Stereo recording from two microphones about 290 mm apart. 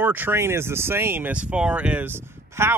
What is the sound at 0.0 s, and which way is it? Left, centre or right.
Speech, centre.